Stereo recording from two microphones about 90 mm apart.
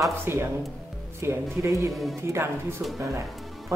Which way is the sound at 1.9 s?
Centre (ahead or behind).